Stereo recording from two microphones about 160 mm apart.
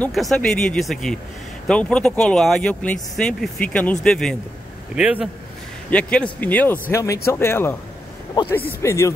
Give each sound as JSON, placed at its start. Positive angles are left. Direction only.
{"t": 0.0, "sound": "speech", "side_deg": 0}
{"t": 4.9, "sound": "speech", "side_deg": -5}
{"t": 5.9, "sound": "speech", "side_deg": 5}